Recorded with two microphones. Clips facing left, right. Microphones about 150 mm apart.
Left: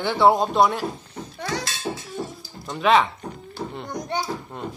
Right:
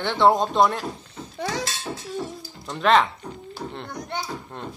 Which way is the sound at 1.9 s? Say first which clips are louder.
Left 3 dB; 25° left (ahead or behind).